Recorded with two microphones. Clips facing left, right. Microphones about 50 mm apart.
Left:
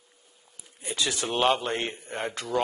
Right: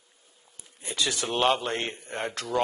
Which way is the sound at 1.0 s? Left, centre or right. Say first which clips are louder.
Even; left.